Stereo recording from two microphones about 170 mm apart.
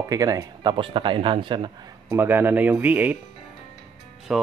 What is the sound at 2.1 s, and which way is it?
Speech, 10° right (ahead or behind).